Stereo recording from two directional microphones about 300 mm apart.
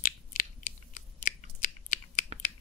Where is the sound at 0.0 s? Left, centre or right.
Left.